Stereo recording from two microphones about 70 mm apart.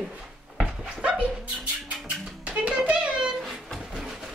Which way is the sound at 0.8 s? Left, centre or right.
Centre.